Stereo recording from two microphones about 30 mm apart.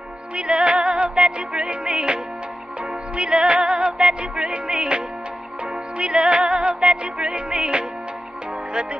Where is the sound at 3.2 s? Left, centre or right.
Right.